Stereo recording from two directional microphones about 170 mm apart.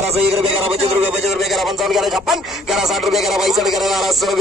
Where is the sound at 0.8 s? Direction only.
Centre (ahead or behind).